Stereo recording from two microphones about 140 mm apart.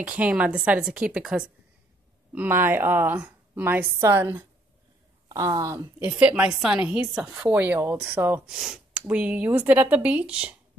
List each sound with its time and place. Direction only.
0.0 s a woman's voice: 10° right (ahead or behind); by 5.8 s 25° right (ahead or behind)
5.9 s a woman's voice: 10° right (ahead or behind)